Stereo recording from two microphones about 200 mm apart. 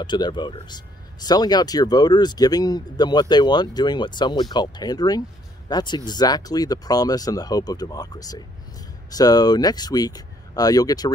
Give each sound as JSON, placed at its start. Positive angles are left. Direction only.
{"t": 0.0, "sound": "speech", "side_deg": 20}